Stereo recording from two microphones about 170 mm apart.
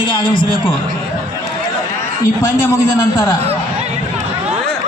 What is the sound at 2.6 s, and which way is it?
Speech, 15° left (ahead or behind).